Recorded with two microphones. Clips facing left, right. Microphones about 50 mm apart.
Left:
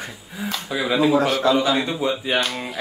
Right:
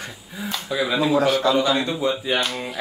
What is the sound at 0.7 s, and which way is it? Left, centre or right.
Speech, centre.